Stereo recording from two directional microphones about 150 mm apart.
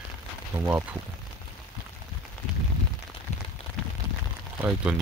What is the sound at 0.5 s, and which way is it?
Speech, 20° right (ahead or behind).